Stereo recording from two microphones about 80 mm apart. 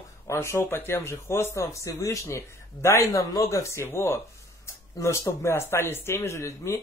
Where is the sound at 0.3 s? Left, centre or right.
Left.